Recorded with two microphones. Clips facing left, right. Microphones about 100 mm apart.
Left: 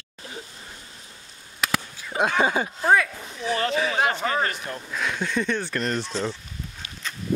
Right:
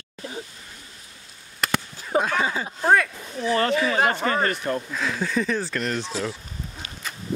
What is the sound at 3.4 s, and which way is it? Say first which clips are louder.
Speech: right 3 dB; 50° right (ahead or behind).